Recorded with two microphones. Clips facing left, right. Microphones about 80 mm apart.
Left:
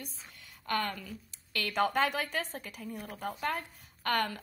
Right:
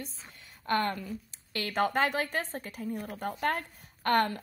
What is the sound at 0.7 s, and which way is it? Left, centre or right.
Speech, right.